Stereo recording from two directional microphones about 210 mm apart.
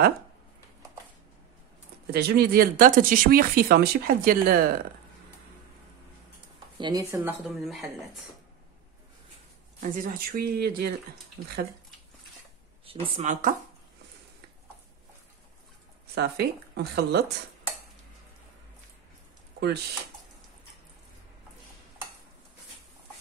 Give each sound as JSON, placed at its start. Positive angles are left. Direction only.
{"t": 2.1, "sound": "speech", "side_deg": -50}
{"t": 6.8, "sound": "speech", "side_deg": -15}
{"t": 7.4, "sound": "speech", "side_deg": 0}
{"t": 9.8, "sound": "speech", "side_deg": -40}
{"t": 12.8, "sound": "a woman's voice", "side_deg": -25}
{"t": 16.2, "sound": "speech", "side_deg": -50}